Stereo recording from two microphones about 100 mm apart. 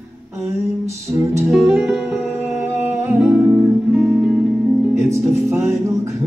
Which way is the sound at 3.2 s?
10° right (ahead or behind).